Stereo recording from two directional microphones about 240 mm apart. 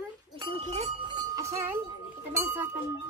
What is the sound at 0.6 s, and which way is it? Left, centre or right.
Wind chime, right.